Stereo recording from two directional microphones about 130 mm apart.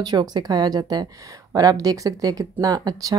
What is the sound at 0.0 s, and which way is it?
Speech, 30° right (ahead or behind).